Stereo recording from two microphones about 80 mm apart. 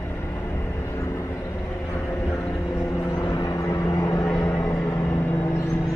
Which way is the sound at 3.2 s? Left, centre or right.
Left.